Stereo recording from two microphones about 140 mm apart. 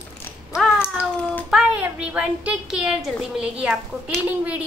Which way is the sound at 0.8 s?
10° left (ahead or behind).